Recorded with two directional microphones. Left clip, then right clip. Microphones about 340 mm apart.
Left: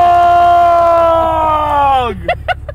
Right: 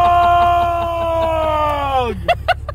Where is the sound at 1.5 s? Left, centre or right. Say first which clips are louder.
Left 5 dB; centre.